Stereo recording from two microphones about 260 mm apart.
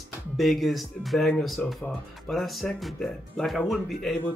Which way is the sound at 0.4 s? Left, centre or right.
Centre.